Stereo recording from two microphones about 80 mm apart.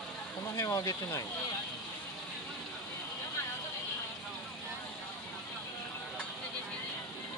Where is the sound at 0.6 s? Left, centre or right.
Left.